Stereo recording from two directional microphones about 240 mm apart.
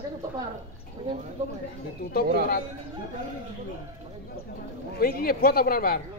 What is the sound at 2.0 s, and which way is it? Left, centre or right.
Speech, left.